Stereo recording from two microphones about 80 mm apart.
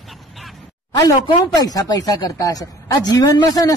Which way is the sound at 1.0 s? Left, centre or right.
Left.